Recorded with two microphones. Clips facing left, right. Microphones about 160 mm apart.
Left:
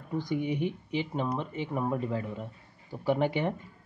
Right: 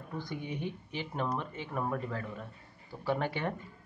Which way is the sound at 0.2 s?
15° left (ahead or behind).